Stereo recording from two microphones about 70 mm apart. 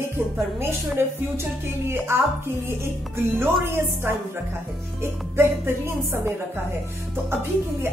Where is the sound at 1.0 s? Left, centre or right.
Right.